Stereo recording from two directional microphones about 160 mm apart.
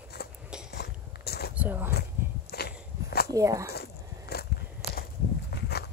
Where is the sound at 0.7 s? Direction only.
90° left.